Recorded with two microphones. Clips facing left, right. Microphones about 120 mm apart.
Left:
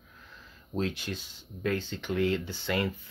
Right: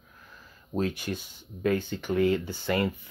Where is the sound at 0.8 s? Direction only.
50° right (ahead or behind).